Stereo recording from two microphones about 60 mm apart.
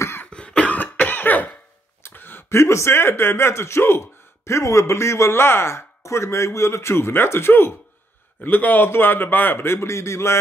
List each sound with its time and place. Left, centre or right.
0.5 s cough: left
2.0 s speech: left
8.4 s a man's voice: left